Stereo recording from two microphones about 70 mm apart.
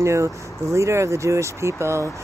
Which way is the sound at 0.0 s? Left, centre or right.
Right.